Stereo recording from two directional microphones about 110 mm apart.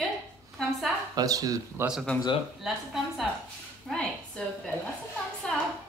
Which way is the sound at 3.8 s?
5° left (ahead or behind).